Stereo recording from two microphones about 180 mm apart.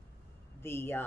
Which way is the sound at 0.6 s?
15° left (ahead or behind).